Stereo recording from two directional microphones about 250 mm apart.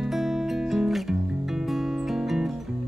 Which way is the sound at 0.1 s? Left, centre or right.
Centre.